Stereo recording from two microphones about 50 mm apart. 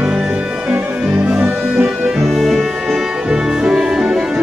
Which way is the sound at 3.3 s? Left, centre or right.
Centre.